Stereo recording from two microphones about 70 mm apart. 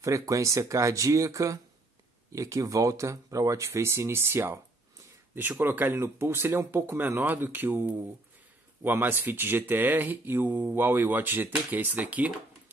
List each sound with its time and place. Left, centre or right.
0.0 s speech: right